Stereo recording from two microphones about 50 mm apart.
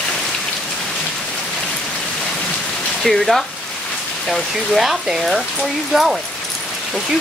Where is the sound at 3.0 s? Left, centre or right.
Centre.